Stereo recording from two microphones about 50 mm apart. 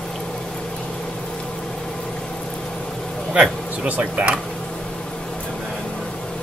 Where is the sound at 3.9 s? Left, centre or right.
Right.